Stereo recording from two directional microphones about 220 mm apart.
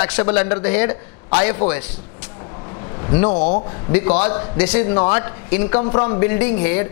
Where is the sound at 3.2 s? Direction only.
30° left (ahead or behind).